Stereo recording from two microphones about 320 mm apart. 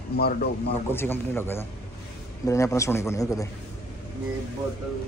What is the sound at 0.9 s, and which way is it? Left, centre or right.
A man's voice, centre.